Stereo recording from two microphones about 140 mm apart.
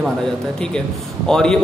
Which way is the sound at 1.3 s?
5° left (ahead or behind).